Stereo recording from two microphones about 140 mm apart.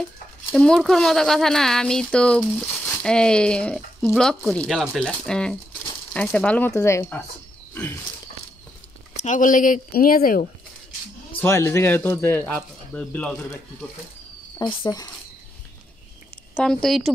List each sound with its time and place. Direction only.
0.5 s speech: 5° left (ahead or behind)
7.7 s pig: 15° left (ahead or behind)
9.2 s speech: 65° left (ahead or behind); by 10.5 s 85° left
11.3 s speech: 15° left (ahead or behind); by 13.8 s centre (ahead or behind)
14.6 s speech: 30° left (ahead or behind)
16.5 s speech: 5° left (ahead or behind)